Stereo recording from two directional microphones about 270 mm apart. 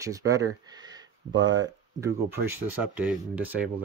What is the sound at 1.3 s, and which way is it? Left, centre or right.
Speech, right.